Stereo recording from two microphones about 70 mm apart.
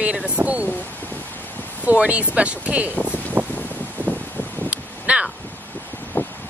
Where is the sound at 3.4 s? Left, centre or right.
Right.